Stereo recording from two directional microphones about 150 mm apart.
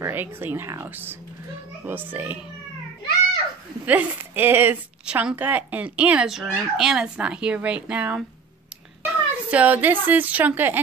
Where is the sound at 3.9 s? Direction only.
10° right (ahead or behind).